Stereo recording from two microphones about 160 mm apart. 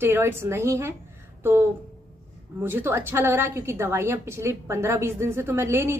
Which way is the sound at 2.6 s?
15° right (ahead or behind).